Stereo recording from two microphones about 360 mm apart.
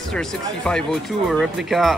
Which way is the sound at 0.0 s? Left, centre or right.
Centre.